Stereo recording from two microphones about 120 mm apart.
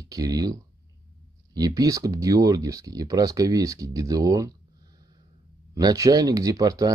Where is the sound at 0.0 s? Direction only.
30° right (ahead or behind).